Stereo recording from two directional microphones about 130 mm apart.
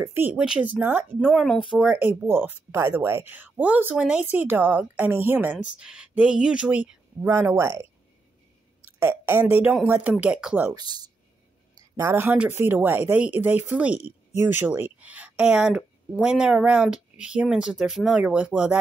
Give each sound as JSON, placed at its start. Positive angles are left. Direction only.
{"t": 0.0, "sound": "speech", "side_deg": -20}
{"t": 0.4, "sound": "speech", "side_deg": -10}
{"t": 1.2, "sound": "speech", "side_deg": 5}
{"t": 1.7, "sound": "speech", "side_deg": -5}
{"t": 7.4, "sound": "speech", "side_deg": -20}
{"t": 9.0, "sound": "speech", "side_deg": -15}
{"t": 10.7, "sound": "speech", "side_deg": -30}
{"t": 12.0, "sound": "speech", "side_deg": -20}